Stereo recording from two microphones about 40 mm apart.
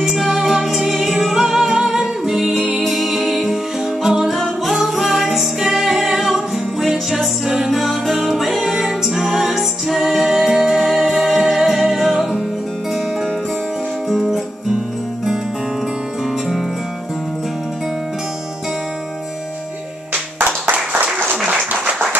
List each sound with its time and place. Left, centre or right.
0.2 s music: centre
2.8 s music: centre
11.9 s music: centre
20.7 s applause: right